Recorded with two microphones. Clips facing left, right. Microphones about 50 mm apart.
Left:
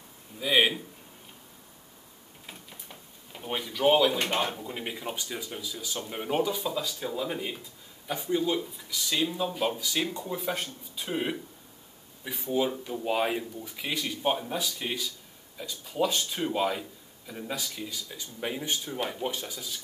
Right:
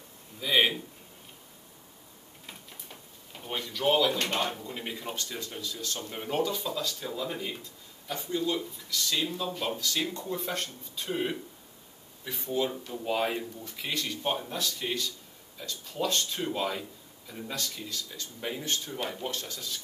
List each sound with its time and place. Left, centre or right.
0.4 s speech: centre
2.4 s speech: centre